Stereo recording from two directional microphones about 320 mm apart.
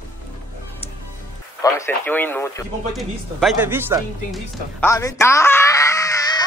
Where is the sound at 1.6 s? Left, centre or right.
Centre.